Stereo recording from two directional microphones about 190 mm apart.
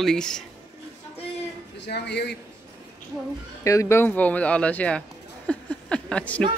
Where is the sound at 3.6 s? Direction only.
15° left (ahead or behind).